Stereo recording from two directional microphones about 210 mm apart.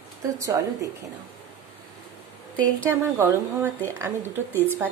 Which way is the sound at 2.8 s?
10° right (ahead or behind).